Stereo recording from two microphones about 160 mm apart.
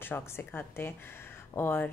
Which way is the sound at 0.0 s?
15° left (ahead or behind).